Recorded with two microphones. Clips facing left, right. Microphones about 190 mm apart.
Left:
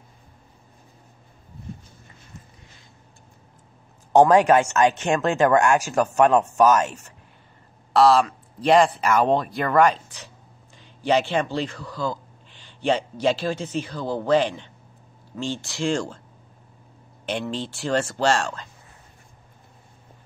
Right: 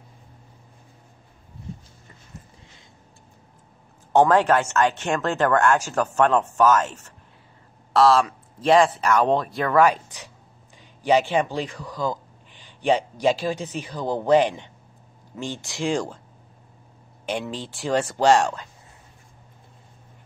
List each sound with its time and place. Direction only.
4.1 s speech: 15° left (ahead or behind)
7.9 s speech: centre (ahead or behind)
9.9 s a man's voice: 15° right (ahead or behind)
17.3 s speech: 10° right (ahead or behind)